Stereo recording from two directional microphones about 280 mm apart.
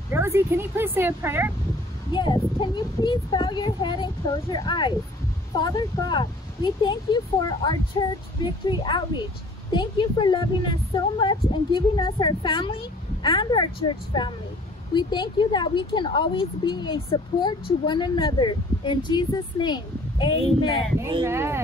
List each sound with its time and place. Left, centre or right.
0.1 s a woman's voice: centre
2.1 s speech: centre
21.0 s a woman's voice: centre